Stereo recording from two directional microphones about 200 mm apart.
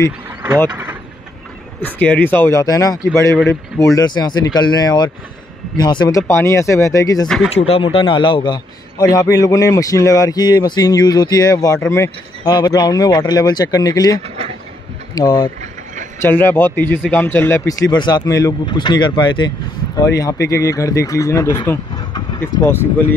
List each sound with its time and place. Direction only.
2.0 s a man's voice: 10° left (ahead or behind)
7.5 s a man's voice: 30° left (ahead or behind); by 23.1 s 10° left (ahead or behind)